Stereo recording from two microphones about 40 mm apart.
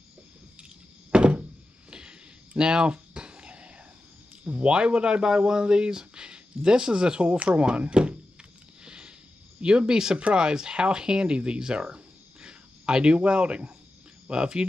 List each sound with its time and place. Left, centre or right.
1.1 s thunk: right
1.9 s a sound: right
4.5 s speech: right
8.8 s sniff: right
9.6 s speech: right